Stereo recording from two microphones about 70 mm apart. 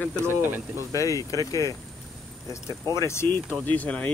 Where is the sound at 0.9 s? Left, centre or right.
Left.